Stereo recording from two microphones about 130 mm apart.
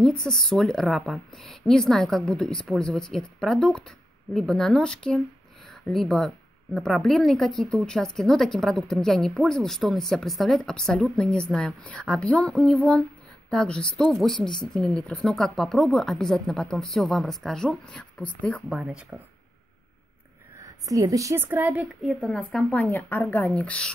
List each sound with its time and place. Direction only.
0.0 s a woman's voice: 5° left (ahead or behind)
18.7 s speech: 5° right (ahead or behind)
20.6 s a woman's voice: 25° right (ahead or behind)
21.5 s speech: 10° right (ahead or behind)
22.0 s speech: 5° left (ahead or behind)